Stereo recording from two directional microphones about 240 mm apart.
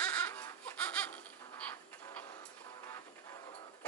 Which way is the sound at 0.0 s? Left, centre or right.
Centre.